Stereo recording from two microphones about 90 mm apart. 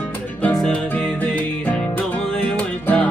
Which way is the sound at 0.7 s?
15° left (ahead or behind).